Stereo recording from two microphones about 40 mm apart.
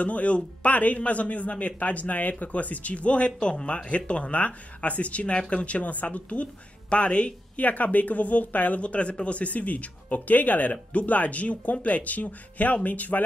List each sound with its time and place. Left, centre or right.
0.0 s speech: left
7.6 s speech: left
8.8 s speech: left